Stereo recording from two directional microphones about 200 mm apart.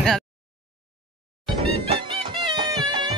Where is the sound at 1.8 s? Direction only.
25° right (ahead or behind).